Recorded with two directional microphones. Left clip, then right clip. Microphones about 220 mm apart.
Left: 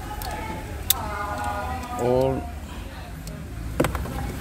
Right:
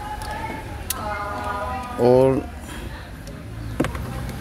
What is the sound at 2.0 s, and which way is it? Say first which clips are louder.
Speech: right 6 dB; 30° right (ahead or behind).